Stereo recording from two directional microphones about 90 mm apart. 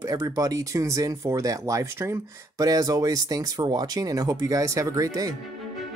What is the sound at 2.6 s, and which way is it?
Speech, 45° right (ahead or behind).